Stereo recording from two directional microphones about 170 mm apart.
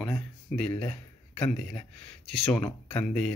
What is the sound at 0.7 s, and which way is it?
Speech, 35° left (ahead or behind).